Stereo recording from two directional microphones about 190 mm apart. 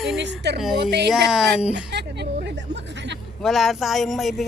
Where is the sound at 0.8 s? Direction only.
60° right (ahead or behind).